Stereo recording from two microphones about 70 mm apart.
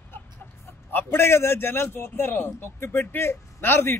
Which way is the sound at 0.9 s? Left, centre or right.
Left.